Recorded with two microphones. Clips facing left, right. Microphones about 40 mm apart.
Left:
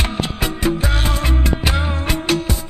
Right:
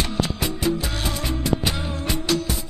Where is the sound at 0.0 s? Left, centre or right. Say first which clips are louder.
Left 2 dB; left.